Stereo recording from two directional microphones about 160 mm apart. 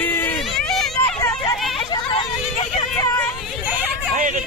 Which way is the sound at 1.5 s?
Centre (ahead or behind).